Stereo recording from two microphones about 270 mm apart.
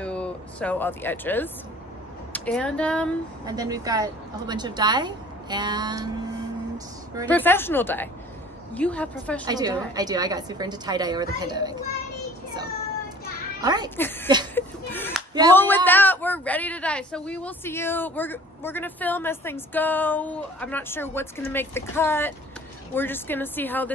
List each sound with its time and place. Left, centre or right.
0.0 s speech: centre
3.4 s a woman's voice: centre
7.2 s a woman's voice: centre
9.5 s a woman's voice: centre
13.6 s a child's voice: centre
13.8 s a woman's voice: centre
14.5 s a sound: centre
15.5 s a woman's voice: centre